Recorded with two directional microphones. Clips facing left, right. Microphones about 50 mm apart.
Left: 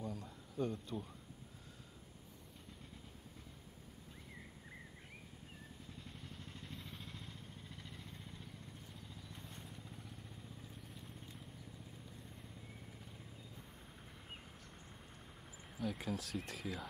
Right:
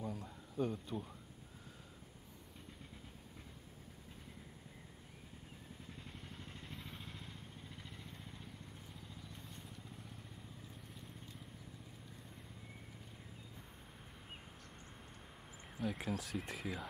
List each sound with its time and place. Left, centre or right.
0.0 s a sound: centre
6.7 s vehicle: centre
15.8 s speech: centre